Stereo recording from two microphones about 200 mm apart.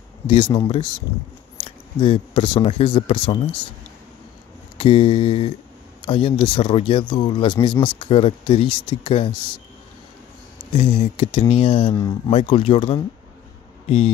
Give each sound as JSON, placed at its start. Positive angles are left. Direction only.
{"t": 0.3, "sound": "speech", "side_deg": 25}
{"t": 2.0, "sound": "speech", "side_deg": 25}
{"t": 4.7, "sound": "speech", "side_deg": 25}
{"t": 10.7, "sound": "speech", "side_deg": 30}
{"t": 12.3, "sound": "speech", "side_deg": 30}